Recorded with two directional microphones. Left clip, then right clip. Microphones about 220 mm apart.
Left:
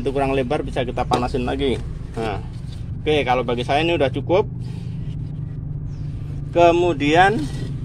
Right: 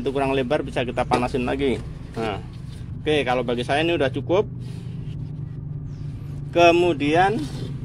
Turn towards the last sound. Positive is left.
turn(degrees=10)  # may be behind; listen again after turning